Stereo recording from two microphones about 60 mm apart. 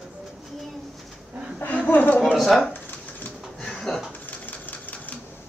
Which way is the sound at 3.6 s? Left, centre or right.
Centre.